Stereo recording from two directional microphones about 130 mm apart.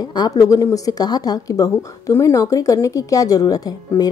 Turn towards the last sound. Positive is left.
turn(degrees=30)  # may be behind; listen again after turning